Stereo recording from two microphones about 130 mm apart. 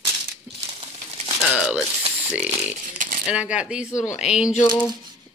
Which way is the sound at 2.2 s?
10° right (ahead or behind).